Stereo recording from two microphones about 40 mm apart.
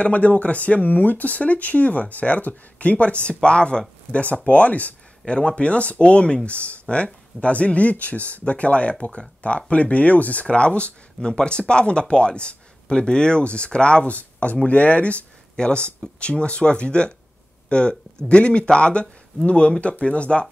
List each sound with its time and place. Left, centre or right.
0.0 s speech: left
4.1 s speech: left
5.2 s speech: left
11.1 s speech: centre